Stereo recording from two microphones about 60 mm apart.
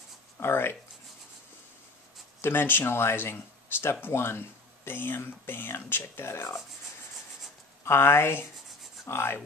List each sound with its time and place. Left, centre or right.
0.4 s speech: left
2.4 s speech: left
7.8 s speech: left